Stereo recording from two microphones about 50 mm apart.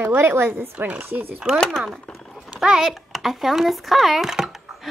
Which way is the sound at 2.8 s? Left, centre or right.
Centre.